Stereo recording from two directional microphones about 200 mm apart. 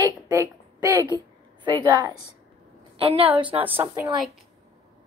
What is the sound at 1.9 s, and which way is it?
Speech, 15° right (ahead or behind).